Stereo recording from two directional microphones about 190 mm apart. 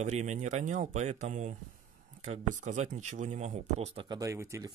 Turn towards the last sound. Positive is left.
turn(degrees=-15)  # may be behind; listen again after turning